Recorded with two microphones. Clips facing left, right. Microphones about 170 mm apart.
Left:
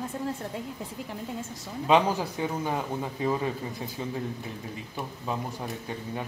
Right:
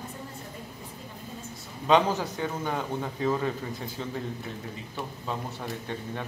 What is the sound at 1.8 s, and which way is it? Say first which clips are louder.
Speech: even; 10° left (ahead or behind).